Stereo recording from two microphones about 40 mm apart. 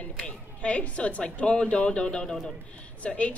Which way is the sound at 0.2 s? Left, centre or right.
Left.